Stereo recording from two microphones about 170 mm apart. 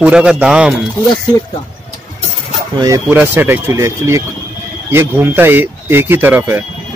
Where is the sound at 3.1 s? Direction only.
10° right (ahead or behind).